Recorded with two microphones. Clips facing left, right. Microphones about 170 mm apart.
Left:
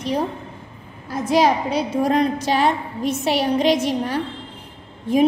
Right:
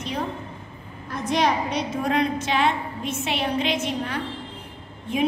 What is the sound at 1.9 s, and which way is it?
A woman's voice, 35° left (ahead or behind).